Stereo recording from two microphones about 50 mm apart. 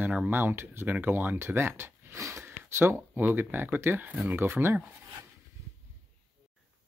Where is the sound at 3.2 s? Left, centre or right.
Right.